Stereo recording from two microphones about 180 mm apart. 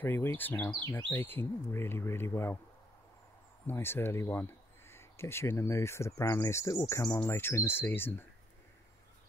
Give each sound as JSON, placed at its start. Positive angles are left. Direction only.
{"t": 0.0, "sound": "speech", "side_deg": 10}
{"t": 3.6, "sound": "speech", "side_deg": 10}